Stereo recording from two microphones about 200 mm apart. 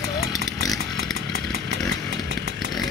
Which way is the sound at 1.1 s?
55° right (ahead or behind).